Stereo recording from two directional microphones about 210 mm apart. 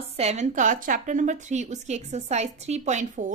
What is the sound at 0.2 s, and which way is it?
A woman's voice, 30° right (ahead or behind).